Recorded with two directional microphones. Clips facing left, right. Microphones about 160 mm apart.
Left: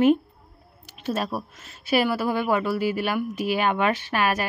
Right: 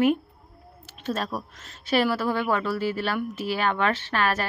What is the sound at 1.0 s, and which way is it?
Speech, 10° left (ahead or behind).